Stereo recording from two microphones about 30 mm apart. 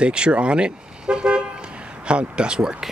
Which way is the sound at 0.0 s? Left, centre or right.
Right.